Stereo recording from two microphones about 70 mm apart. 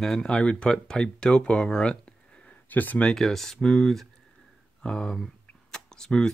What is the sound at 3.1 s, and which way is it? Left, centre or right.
Speech, centre.